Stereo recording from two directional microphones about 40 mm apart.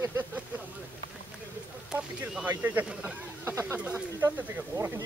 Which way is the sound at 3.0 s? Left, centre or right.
Right.